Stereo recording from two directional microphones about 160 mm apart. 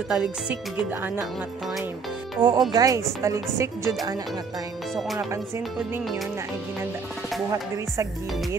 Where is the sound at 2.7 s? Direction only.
20° right (ahead or behind).